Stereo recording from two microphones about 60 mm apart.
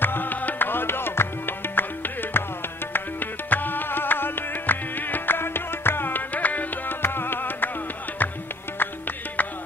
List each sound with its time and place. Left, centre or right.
0.0 s music: left
7.0 s music: left